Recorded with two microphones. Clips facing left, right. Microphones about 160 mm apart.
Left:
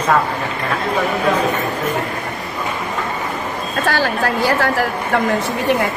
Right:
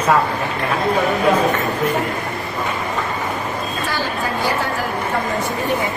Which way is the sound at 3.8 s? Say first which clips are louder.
Left 7 dB; 75° left (ahead or behind).